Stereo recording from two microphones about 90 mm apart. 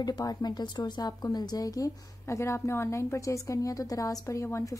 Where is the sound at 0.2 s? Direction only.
45° left (ahead or behind).